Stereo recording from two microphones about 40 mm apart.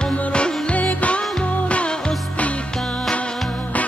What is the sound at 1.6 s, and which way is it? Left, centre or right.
Music, left.